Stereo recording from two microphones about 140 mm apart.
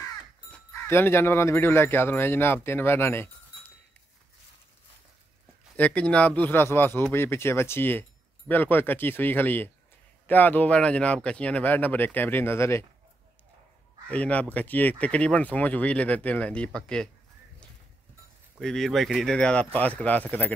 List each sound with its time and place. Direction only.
0.5 s speech: 15° left (ahead or behind)
5.8 s speech: 10° left (ahead or behind)
14.0 s speech: 10° left (ahead or behind)
18.6 s speech: 5° left (ahead or behind)